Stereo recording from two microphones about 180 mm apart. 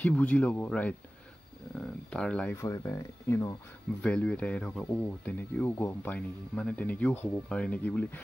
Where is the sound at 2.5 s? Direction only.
15° left (ahead or behind).